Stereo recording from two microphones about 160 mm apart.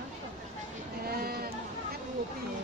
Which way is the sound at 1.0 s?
70° right (ahead or behind).